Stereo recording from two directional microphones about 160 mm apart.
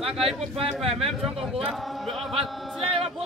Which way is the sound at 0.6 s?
40° right (ahead or behind).